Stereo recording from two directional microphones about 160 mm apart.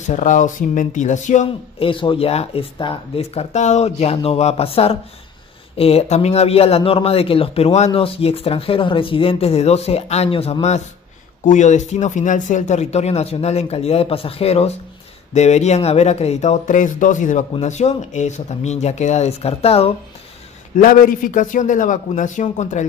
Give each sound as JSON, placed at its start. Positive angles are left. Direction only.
{"t": 0.0, "sound": "speech", "side_deg": 50}
{"t": 1.8, "sound": "a man's voice", "side_deg": 35}
{"t": 20.7, "sound": "speech", "side_deg": 55}